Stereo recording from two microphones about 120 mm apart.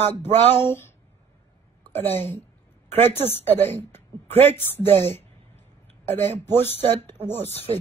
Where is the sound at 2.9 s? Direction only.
20° left (ahead or behind).